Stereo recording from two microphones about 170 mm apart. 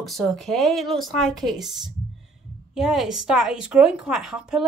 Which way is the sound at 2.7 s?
Centre (ahead or behind).